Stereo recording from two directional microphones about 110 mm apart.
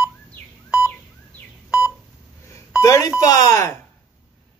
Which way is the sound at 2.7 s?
30° left (ahead or behind).